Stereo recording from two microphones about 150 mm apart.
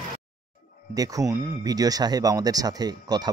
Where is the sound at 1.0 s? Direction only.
25° right (ahead or behind).